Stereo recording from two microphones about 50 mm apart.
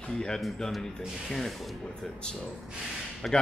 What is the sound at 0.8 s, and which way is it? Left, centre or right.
Speech, centre.